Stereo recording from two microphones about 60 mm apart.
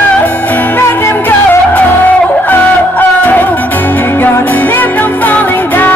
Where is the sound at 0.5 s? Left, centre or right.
Left.